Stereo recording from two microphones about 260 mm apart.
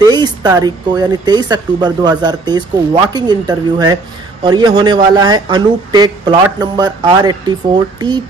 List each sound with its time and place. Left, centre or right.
0.0 s speech: centre